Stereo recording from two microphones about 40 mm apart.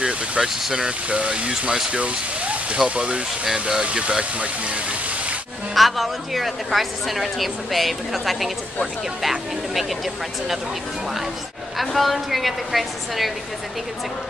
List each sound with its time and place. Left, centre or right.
0.4 s speech: centre
0.8 s speech: right
5.8 s a woman's voice: centre
11.8 s a woman's voice: centre